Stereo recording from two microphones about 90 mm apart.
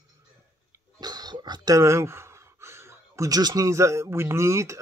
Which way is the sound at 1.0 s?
50° right (ahead or behind).